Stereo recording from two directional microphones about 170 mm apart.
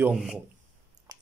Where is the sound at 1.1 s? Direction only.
20° right (ahead or behind).